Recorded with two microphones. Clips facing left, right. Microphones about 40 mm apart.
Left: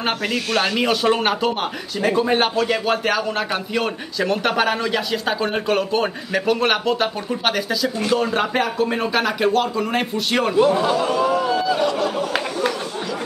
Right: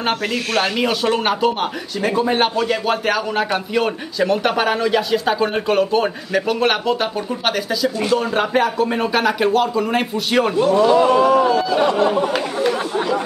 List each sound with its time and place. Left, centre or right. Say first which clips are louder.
0.0 s speech: right 2 dB; centre
10.5 s a man's voice: right 2 dB; centre
11.0 s speech: right 6 dB; right
11.5 s speech: right 2 dB; centre
11.8 s speech: right 4 dB; right